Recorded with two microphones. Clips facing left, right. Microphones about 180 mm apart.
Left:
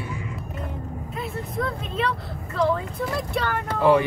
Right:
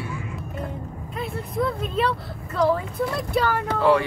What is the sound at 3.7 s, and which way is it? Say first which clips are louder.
Speech: left 2 dB; 15° left (ahead or behind).